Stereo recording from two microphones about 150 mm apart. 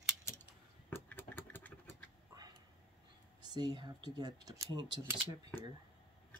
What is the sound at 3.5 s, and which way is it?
Speech, 30° right (ahead or behind).